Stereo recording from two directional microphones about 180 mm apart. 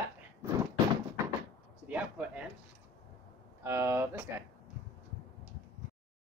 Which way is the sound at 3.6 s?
15° right (ahead or behind).